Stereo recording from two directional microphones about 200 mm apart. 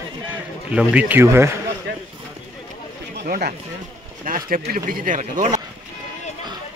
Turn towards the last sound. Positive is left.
turn(degrees=-40)  # may be behind; listen again after turning